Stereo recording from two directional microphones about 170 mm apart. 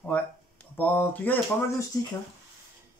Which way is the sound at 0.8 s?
10° left (ahead or behind).